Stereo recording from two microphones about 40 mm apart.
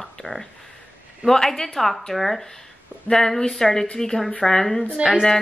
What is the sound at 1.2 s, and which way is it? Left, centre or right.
A woman's voice, centre.